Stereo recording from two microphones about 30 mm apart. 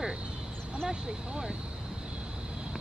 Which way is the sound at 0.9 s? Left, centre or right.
Right.